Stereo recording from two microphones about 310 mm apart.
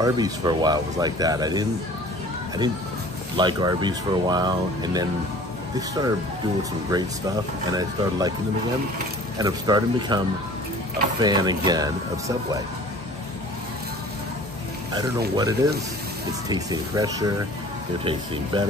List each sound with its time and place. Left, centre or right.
0.0 s speech: centre
3.3 s speech: centre
9.4 s speech: centre
15.0 s speech: centre